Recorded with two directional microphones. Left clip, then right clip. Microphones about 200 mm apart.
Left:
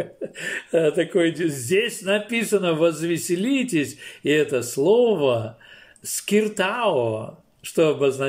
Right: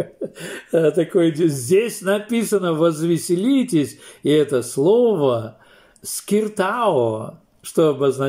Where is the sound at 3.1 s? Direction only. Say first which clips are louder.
Right 4 dB; centre (ahead or behind).